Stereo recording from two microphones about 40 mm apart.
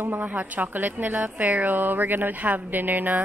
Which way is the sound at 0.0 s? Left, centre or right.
Right.